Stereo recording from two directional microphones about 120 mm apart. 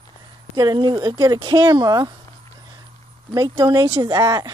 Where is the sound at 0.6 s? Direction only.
35° right (ahead or behind).